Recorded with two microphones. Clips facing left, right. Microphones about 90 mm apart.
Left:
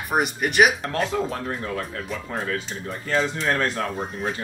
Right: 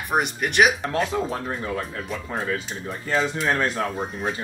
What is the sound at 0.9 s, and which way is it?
Speech, 15° right (ahead or behind).